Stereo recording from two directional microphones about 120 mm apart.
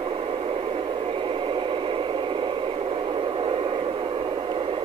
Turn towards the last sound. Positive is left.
turn(degrees=-50)  # may be behind; listen again after turning